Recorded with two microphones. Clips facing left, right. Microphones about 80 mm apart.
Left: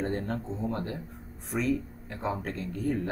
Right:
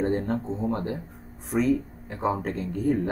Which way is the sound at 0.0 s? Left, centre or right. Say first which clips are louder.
Right 6 dB; centre.